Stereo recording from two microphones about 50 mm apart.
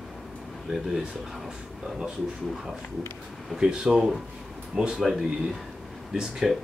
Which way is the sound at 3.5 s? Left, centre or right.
Centre.